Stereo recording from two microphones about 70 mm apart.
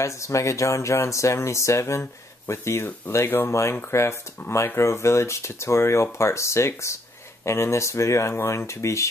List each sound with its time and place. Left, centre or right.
0.0 s speech: left